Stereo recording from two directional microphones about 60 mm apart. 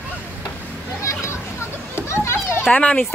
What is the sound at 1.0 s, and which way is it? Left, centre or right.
Children playing, left.